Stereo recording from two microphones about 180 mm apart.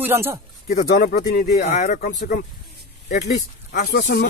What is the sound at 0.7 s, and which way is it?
Speech, 55° left (ahead or behind).